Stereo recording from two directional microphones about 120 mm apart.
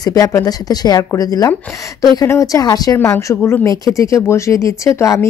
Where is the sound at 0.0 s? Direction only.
30° left (ahead or behind).